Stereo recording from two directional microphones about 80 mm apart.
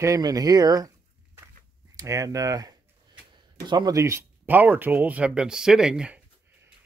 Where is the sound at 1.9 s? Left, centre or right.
Right.